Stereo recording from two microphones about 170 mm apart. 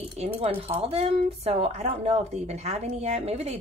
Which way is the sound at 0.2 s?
35° right (ahead or behind).